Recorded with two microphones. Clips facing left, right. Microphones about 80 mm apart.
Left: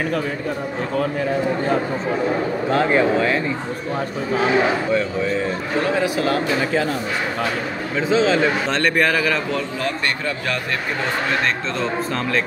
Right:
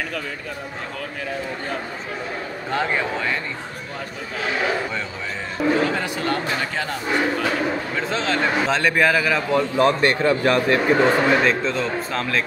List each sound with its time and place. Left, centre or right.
2.9 s speech: centre
5.8 s a man's voice: centre
8.1 s a man's voice: centre
9.5 s a man's voice: right
11.4 s a man's voice: centre